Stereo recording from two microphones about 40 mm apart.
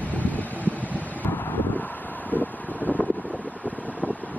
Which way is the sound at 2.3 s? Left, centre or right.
Left.